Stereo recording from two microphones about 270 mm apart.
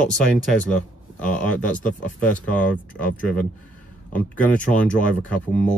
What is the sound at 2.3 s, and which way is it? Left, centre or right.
Speech, centre.